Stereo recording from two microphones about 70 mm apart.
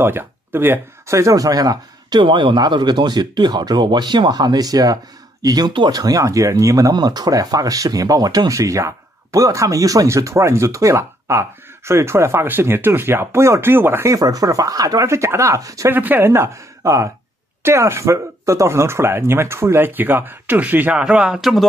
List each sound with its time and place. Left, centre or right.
0.0 s speech: right
1.1 s a man's voice: right
14.1 s speech: right
15.0 s speech: right
15.9 s speech: right
16.8 s speech: right
17.6 s speech: right
20.9 s speech: centre